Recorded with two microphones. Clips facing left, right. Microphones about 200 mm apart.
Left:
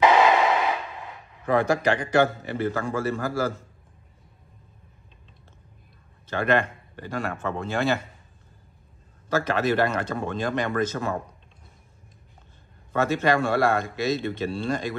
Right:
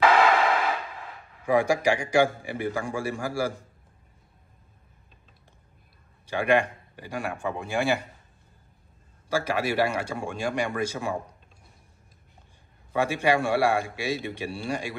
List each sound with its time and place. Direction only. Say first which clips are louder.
0.1 s a sound: left 2 dB; 20° left (ahead or behind)
1.4 s a man's voice: even; 10° right (ahead or behind)
6.2 s a man's voice: even; 10° right (ahead or behind)
9.3 s a man's voice: left 3 dB; 10° right (ahead or behind)
12.9 s a man's voice: left 1 dB; 10° right (ahead or behind)